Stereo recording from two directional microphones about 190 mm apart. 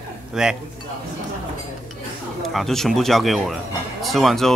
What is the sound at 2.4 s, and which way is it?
Speech, centre (ahead or behind).